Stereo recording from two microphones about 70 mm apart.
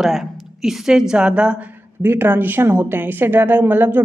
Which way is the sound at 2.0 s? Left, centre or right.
Right.